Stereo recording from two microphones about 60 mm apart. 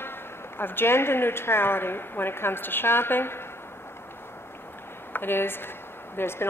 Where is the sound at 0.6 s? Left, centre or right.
Left.